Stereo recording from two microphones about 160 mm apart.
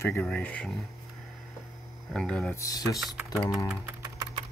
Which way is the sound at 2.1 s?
5° left (ahead or behind).